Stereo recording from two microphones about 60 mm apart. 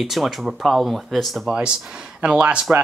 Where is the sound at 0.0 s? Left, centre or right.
Centre.